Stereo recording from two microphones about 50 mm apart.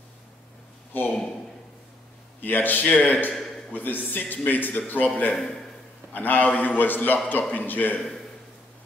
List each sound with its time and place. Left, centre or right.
2.4 s a man's voice: left